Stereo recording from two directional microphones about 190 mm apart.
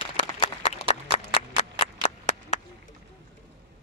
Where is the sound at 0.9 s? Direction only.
35° left (ahead or behind).